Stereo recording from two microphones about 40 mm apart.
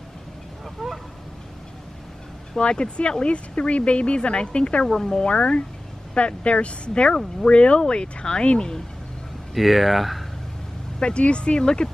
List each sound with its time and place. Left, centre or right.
0.8 s a sound: centre
2.6 s speech: left
4.8 s speech: centre
5.2 s speech: left
9.5 s speech: centre
11.0 s speech: left